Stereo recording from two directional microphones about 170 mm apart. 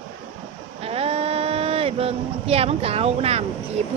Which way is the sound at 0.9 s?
35° right (ahead or behind).